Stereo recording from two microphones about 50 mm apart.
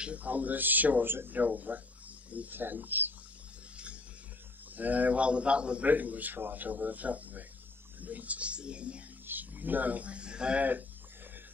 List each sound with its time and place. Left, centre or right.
0.0 s speech: right
4.7 s speech: right
5.9 s speech: right
9.2 s speech: right; by 10.6 s centre